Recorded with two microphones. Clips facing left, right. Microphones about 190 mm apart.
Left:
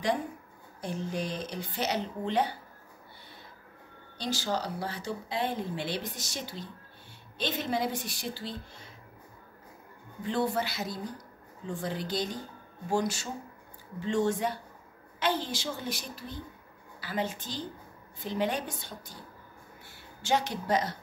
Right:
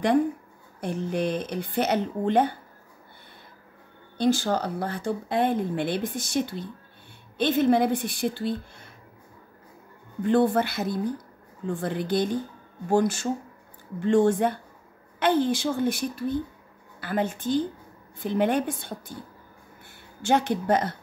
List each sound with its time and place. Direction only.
0.7 s speech: 60° right (ahead or behind)
4.2 s speech: 55° right (ahead or behind)
10.2 s speech: 55° right (ahead or behind)
20.2 s speech: 55° right (ahead or behind)